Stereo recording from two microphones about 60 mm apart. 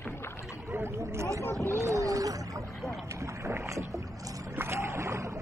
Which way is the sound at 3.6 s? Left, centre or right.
Right.